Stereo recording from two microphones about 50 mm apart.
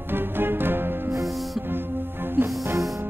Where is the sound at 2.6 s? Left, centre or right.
Right.